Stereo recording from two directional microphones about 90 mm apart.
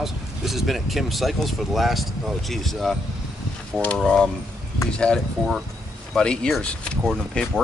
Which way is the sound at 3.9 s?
5° left (ahead or behind).